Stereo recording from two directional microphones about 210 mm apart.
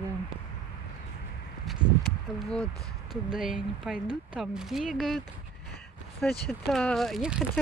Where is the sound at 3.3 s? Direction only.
5° right (ahead or behind).